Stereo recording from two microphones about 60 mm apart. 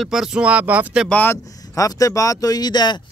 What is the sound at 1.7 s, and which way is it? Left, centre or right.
Speech, left.